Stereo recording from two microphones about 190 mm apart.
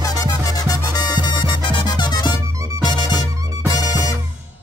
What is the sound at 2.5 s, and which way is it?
Music, 15° right (ahead or behind).